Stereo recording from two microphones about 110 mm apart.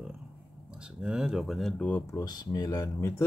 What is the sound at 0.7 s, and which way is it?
Speech, 10° right (ahead or behind).